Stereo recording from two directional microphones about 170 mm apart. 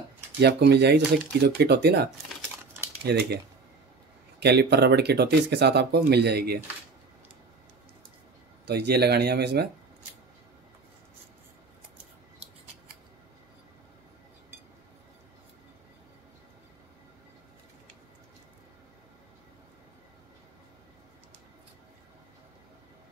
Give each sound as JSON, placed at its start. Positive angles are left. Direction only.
{"t": 0.4, "sound": "speech", "side_deg": -80}
{"t": 3.1, "sound": "speech", "side_deg": -70}
{"t": 4.4, "sound": "speech", "side_deg": -80}
{"t": 8.6, "sound": "speech", "side_deg": -75}